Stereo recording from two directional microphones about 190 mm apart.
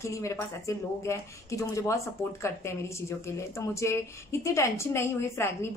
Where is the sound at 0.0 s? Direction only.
15° left (ahead or behind).